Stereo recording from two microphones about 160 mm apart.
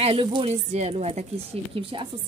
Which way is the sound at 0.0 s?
30° right (ahead or behind).